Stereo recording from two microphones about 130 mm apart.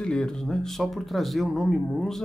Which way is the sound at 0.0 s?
5° left (ahead or behind).